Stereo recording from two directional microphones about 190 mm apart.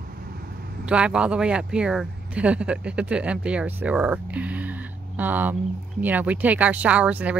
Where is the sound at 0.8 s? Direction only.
5° right (ahead or behind).